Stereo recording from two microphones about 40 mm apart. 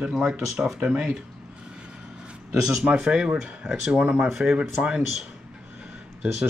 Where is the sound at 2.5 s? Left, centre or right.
Centre.